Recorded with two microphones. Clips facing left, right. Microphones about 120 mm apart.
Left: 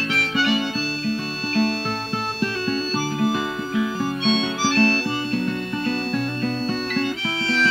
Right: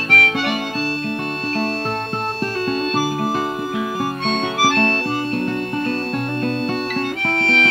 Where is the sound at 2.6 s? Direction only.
55° right (ahead or behind).